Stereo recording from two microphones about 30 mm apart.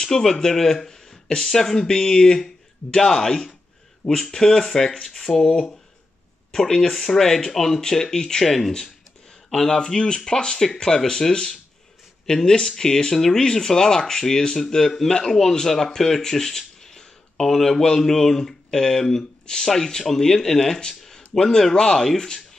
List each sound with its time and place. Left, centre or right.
0.0 s speech: centre
1.9 s speech: left
6.6 s speech: centre
9.5 s speech: centre
9.9 s speech: left